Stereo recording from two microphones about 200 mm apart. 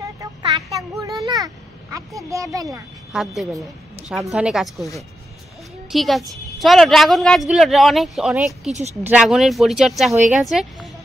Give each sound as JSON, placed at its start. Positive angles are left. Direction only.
{"t": 0.0, "sound": "a sound", "side_deg": -15}
{"t": 3.1, "sound": "a woman's voice", "side_deg": 0}
{"t": 8.6, "sound": "speech", "side_deg": -35}
{"t": 9.0, "sound": "a woman's voice", "side_deg": -5}